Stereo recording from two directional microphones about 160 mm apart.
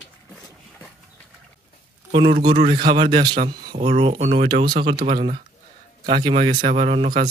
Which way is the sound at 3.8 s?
40° right (ahead or behind).